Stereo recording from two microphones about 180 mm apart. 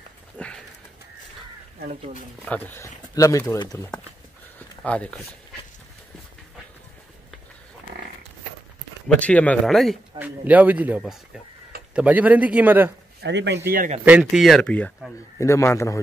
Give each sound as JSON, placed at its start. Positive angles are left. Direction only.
{"t": 0.4, "sound": "a sound", "side_deg": 5}
{"t": 2.4, "sound": "speech", "side_deg": 10}
{"t": 9.2, "sound": "speech", "side_deg": 10}
{"t": 13.2, "sound": "speech", "side_deg": -75}
{"t": 14.0, "sound": "speech", "side_deg": -5}
{"t": 15.3, "sound": "speech", "side_deg": 15}